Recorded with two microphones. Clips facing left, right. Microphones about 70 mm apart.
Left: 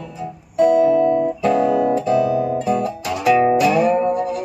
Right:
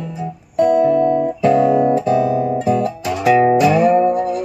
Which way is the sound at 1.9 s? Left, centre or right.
Right.